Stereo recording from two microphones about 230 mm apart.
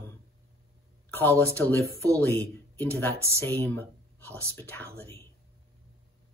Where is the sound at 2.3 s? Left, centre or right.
Centre.